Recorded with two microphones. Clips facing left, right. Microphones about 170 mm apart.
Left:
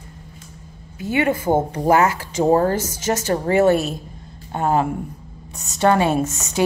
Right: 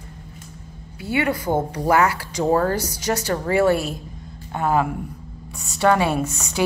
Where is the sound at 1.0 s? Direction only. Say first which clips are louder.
Left 3 dB; 25° left (ahead or behind).